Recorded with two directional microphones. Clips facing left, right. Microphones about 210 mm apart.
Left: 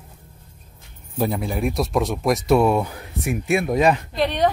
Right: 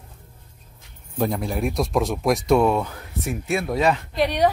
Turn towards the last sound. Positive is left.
turn(degrees=-10)  # may be behind; listen again after turning